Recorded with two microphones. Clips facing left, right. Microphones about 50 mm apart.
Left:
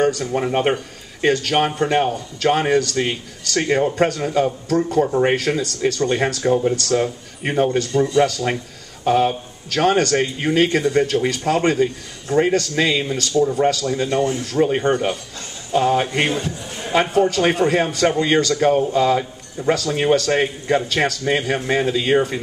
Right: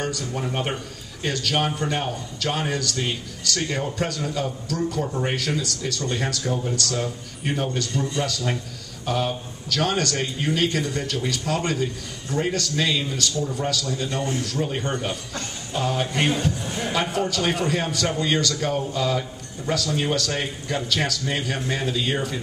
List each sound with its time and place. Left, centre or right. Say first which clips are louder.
0.0 s a man's voice: left 9 dB; left